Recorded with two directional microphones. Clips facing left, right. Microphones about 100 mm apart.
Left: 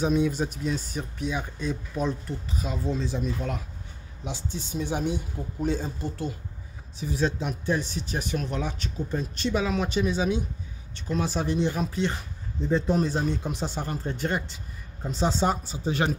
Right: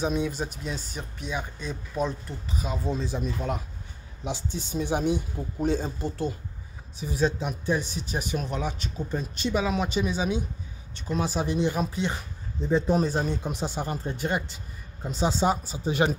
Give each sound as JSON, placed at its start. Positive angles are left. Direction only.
{"t": 0.0, "sound": "speech", "side_deg": 0}
{"t": 4.7, "sound": "speech", "side_deg": -20}
{"t": 7.0, "sound": "speech", "side_deg": -10}